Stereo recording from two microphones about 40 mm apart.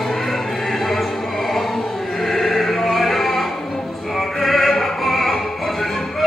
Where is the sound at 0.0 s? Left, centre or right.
Centre.